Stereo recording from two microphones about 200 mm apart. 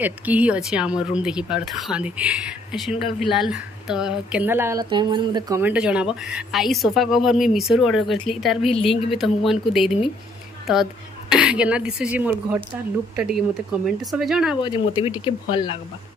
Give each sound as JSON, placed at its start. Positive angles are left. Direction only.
{"t": 0.0, "sound": "speech", "side_deg": -10}
{"t": 4.8, "sound": "speech", "side_deg": -25}
{"t": 5.6, "sound": "speech", "side_deg": -5}
{"t": 8.7, "sound": "speech", "side_deg": 30}
{"t": 9.1, "sound": "a woman's voice", "side_deg": 0}
{"t": 14.6, "sound": "speech", "side_deg": 25}